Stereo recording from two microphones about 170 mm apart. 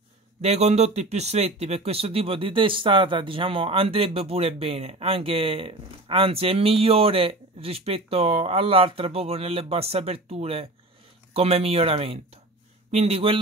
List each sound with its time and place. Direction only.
0.4 s speech: 40° right (ahead or behind)